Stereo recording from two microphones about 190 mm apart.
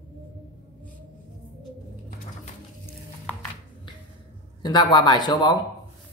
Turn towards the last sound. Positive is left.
turn(degrees=20)  # may be behind; listen again after turning